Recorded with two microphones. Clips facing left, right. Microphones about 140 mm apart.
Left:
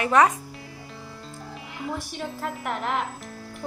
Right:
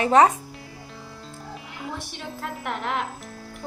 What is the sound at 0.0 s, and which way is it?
Speech, 30° right (ahead or behind).